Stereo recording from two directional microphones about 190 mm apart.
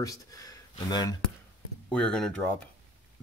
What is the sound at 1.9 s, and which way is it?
Speech, 5° left (ahead or behind).